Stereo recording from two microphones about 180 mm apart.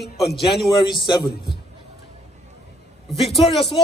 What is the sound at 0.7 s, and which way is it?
Speech, 25° left (ahead or behind).